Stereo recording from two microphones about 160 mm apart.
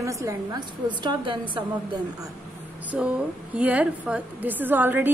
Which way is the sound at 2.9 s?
5° right (ahead or behind).